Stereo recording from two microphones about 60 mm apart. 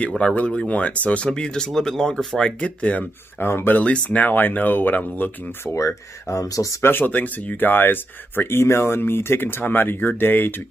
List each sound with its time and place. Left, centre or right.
0.2 s speech: centre
3.3 s speech: left
3.7 s speech: centre
4.2 s speech: left
5.7 s speech: left
6.8 s speech: left